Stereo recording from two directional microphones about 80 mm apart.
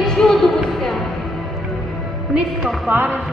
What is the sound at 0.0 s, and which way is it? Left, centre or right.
Music, centre.